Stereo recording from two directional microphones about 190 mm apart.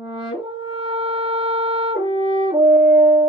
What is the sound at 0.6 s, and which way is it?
Music, 30° right (ahead or behind).